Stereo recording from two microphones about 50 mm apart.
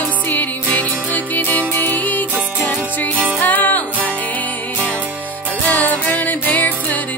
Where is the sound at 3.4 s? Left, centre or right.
Left.